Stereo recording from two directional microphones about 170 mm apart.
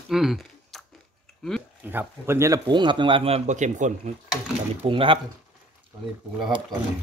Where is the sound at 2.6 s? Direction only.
25° right (ahead or behind); by 4.1 s 45° right (ahead or behind).